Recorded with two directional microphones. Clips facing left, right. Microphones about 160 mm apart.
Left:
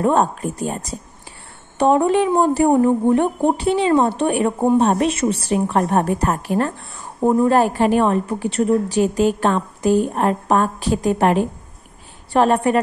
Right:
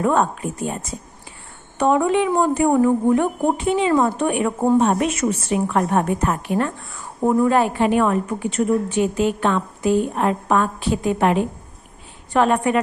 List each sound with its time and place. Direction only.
0.0 s a woman's voice: 35° left (ahead or behind)
7.2 s speech: 15° left (ahead or behind)
7.4 s a woman's voice: 40° left (ahead or behind)